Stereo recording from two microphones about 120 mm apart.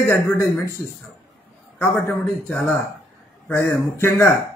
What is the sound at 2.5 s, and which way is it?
Speech, 5° left (ahead or behind).